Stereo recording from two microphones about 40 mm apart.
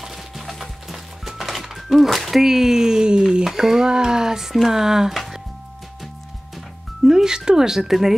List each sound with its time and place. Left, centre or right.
0.0 s music: centre; by 3.4 s right
3.4 s speech: centre
5.1 s music: centre
7.1 s speech: centre